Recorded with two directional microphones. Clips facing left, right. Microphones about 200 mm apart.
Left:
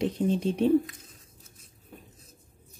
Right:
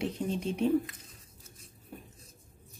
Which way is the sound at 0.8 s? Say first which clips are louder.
Left 2 dB; centre (ahead or behind).